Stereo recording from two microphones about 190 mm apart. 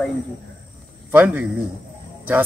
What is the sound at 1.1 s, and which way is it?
Speech, 10° right (ahead or behind).